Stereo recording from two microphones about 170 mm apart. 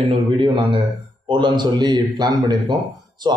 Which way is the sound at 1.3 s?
25° right (ahead or behind).